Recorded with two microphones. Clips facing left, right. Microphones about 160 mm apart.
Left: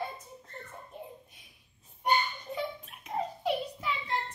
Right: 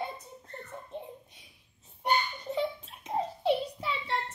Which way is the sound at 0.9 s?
25° right (ahead or behind).